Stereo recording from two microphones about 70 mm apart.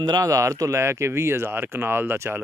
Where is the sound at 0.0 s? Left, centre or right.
Right.